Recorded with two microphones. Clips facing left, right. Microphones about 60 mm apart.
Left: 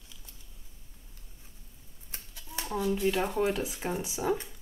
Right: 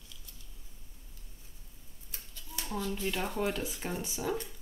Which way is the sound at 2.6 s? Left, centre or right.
Centre.